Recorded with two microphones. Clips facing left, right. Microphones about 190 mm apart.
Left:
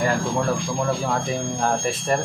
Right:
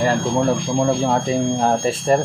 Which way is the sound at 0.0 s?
30° right (ahead or behind).